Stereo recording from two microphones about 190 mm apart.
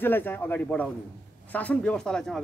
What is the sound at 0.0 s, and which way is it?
Speech, 10° left (ahead or behind).